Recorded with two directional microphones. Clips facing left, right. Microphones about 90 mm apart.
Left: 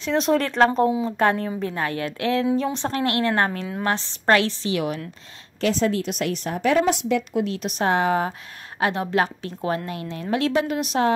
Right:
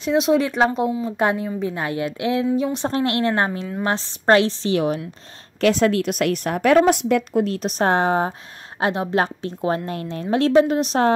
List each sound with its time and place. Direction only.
0.2 s a woman's voice: 5° right (ahead or behind)
2.9 s a woman's voice: 25° right (ahead or behind)
5.6 s a woman's voice: 70° right (ahead or behind); by 11.1 s 35° right (ahead or behind)